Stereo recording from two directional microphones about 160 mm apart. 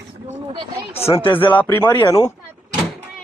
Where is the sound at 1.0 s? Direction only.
35° left (ahead or behind).